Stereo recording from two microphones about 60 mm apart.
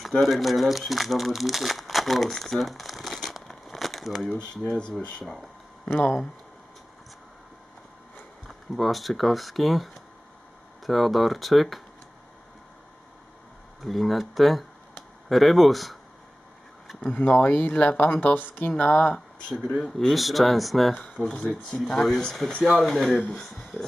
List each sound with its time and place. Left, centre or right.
0.0 s speech: centre
8.5 s speech: centre
10.9 s speech: centre
13.8 s speech: centre
17.0 s speech: left
18.8 s speech: centre
20.2 s speech: centre